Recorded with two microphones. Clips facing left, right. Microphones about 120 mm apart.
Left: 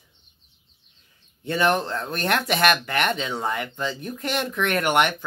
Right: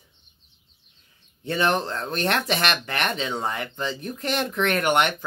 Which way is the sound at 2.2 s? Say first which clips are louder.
Left 3 dB; 25° right (ahead or behind).